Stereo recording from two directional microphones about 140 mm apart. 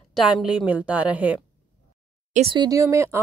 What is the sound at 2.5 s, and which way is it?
Speech, 30° right (ahead or behind).